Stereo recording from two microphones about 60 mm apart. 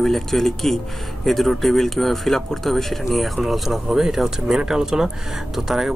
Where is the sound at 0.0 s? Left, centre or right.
Centre.